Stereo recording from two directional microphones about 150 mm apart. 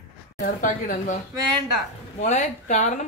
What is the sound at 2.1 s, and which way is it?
Speech, 50° left (ahead or behind).